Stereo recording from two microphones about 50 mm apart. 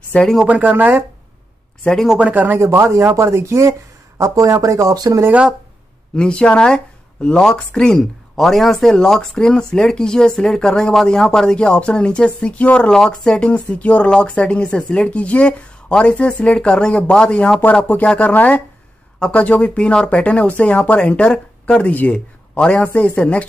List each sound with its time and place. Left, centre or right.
0.1 s speech: left
0.5 s speech: right
2.1 s speech: right
2.6 s speech: right
4.2 s speech: right
6.1 s speech: centre
12.9 s speech: centre
13.5 s a man's voice: left